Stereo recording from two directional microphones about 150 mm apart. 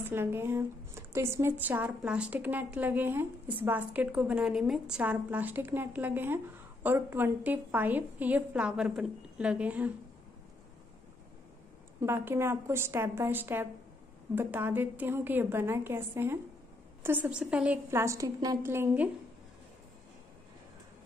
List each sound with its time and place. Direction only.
0.0 s speech: 15° right (ahead or behind)
12.0 s speech: 15° right (ahead or behind)
18.0 s a woman's voice: 20° right (ahead or behind)